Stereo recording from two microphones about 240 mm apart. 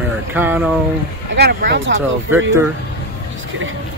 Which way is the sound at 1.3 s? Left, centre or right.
Right.